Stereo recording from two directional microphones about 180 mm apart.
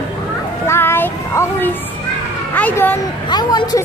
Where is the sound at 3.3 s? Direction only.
25° left (ahead or behind).